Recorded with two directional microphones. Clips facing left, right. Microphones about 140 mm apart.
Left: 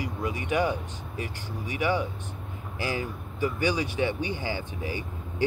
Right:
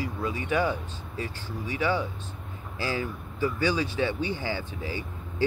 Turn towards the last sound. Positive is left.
turn(degrees=15)  # may be behind; listen again after turning